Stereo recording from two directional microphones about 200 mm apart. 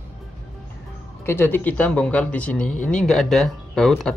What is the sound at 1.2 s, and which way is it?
Speech, 10° left (ahead or behind).